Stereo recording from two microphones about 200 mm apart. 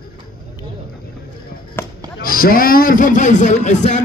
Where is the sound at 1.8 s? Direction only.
10° left (ahead or behind).